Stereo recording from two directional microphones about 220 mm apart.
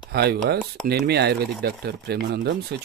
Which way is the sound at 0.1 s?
45° right (ahead or behind).